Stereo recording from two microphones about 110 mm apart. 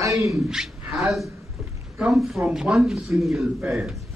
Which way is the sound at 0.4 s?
5° right (ahead or behind).